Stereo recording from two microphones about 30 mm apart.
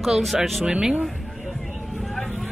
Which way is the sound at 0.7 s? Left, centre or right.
Right.